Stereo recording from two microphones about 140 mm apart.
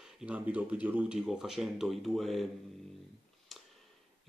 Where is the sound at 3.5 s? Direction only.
Centre (ahead or behind).